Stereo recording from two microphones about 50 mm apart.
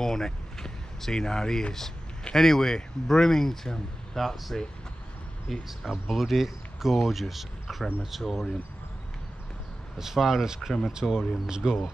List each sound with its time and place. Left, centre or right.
0.0 s speech: centre
9.9 s speech: centre
11.0 s speech: centre
11.4 s speech: centre